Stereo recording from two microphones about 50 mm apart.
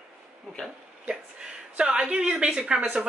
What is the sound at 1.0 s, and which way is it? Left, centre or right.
Speech, centre.